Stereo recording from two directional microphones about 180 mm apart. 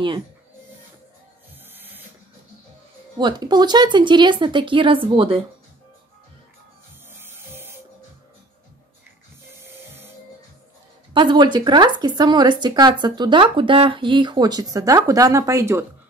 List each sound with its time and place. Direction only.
1.7 s printer: 10° right (ahead or behind)
3.2 s speech: 25° right (ahead or behind)
7.2 s music: 10° right (ahead or behind)
11.1 s speech: 25° right (ahead or behind)